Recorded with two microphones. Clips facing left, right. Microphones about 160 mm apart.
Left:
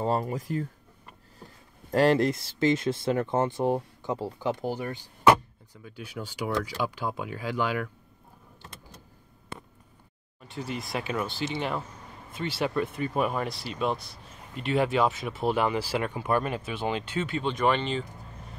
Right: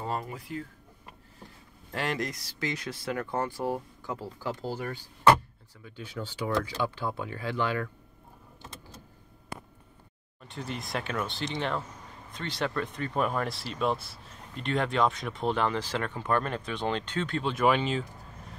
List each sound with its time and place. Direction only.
0.0 s speech: 35° left (ahead or behind)
1.9 s speech: 35° left (ahead or behind); by 7.9 s 10° left (ahead or behind)
10.5 s speech: centre (ahead or behind)